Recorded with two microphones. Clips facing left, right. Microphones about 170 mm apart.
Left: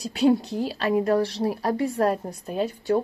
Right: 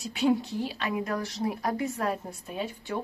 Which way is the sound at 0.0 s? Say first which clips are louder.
Left 5 dB; 35° left (ahead or behind).